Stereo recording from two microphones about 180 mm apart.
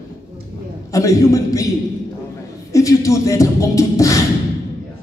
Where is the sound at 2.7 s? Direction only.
15° left (ahead or behind).